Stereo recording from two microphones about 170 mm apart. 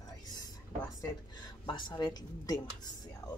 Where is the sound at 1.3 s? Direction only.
25° left (ahead or behind).